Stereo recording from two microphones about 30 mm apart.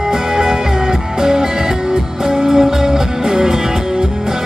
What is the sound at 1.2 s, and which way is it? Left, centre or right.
Music, centre.